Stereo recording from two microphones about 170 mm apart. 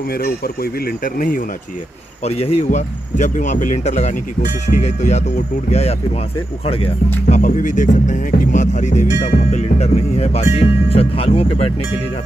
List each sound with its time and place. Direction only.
0.1 s speech: 65° left (ahead or behind)
2.2 s speech: 35° left (ahead or behind)
7.2 s speech: 45° left (ahead or behind)